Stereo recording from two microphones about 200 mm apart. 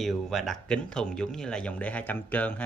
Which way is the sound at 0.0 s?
Centre (ahead or behind).